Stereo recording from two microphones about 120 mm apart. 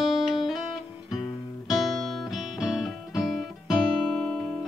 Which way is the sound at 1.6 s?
Centre (ahead or behind).